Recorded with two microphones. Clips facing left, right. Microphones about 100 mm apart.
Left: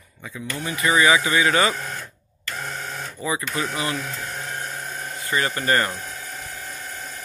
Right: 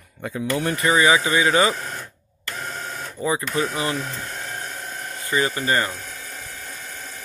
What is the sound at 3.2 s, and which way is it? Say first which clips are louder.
Speech: right 4 dB; 35° right (ahead or behind).